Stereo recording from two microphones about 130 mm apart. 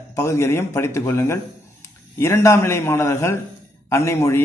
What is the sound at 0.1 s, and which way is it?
A man's voice, 20° left (ahead or behind).